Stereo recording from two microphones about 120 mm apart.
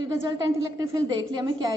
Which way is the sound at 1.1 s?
35° right (ahead or behind).